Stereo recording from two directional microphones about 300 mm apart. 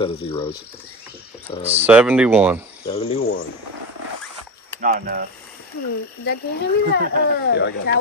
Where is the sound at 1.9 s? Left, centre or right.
Centre.